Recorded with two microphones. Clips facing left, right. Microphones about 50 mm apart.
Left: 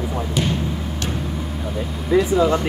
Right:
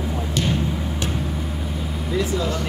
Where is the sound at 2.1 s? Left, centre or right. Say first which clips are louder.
Left 8 dB; left.